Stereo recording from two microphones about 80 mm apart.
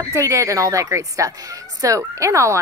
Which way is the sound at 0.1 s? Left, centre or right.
Right.